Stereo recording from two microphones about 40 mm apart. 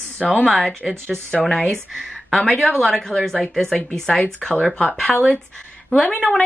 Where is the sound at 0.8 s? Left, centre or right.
Centre.